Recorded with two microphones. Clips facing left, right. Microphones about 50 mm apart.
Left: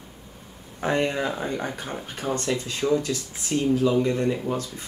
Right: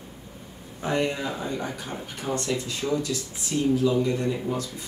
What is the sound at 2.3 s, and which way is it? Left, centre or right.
Speech, centre.